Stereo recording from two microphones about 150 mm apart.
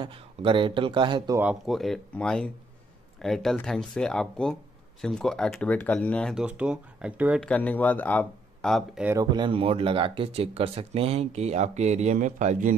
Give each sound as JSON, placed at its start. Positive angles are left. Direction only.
{"t": 0.0, "sound": "speech", "side_deg": -35}
{"t": 1.4, "sound": "speech", "side_deg": -5}
{"t": 6.3, "sound": "speech", "side_deg": -10}
{"t": 7.3, "sound": "speech", "side_deg": 10}
{"t": 9.2, "sound": "speech", "side_deg": -30}